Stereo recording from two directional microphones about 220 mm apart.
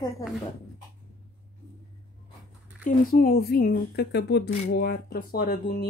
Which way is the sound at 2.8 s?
40° left (ahead or behind).